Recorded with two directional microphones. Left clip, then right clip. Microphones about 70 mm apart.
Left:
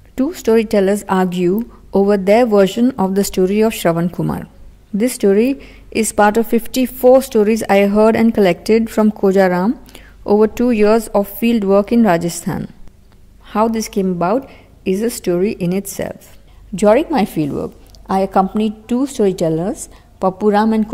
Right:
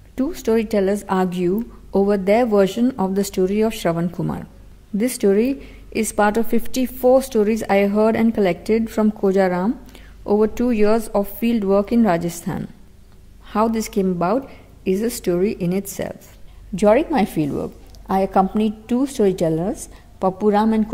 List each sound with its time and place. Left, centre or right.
0.1 s a woman's voice: left
16.7 s a woman's voice: centre